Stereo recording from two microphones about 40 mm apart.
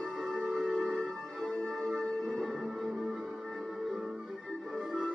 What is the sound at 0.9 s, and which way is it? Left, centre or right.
Music, centre.